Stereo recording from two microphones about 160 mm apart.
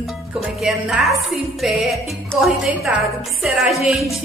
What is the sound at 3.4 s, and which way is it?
Speech, centre (ahead or behind).